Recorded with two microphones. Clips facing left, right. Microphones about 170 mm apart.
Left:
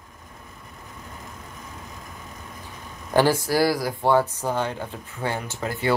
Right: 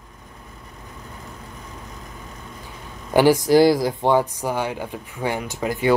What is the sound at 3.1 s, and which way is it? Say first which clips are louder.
Speech: right 5 dB; 15° right (ahead or behind).